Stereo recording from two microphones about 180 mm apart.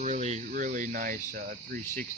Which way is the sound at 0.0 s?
40° right (ahead or behind).